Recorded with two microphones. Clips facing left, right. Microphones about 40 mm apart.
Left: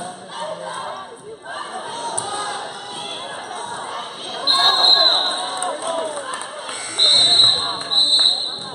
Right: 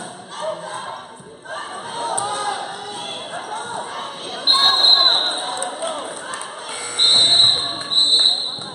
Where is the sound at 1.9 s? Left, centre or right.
Centre.